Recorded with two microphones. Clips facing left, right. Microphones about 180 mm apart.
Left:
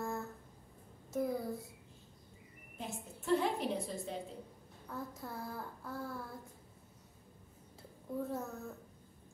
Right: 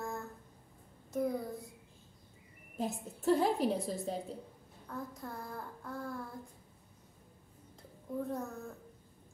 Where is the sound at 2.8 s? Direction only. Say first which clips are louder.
Right 7 dB; 40° right (ahead or behind).